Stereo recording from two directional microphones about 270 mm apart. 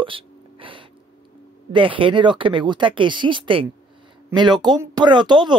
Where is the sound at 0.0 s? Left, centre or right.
Centre.